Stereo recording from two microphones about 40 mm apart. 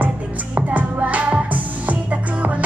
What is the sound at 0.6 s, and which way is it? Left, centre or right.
Music, right.